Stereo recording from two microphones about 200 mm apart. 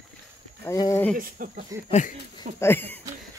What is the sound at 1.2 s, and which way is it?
Speech, 45° right (ahead or behind).